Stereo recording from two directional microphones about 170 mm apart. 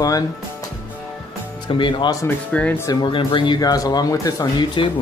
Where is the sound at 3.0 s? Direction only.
30° left (ahead or behind).